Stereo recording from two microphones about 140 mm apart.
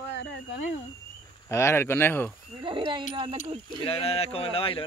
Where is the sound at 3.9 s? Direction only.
45° left (ahead or behind).